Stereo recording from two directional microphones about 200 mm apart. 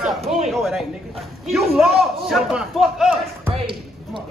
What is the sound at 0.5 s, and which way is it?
A man's voice, centre (ahead or behind).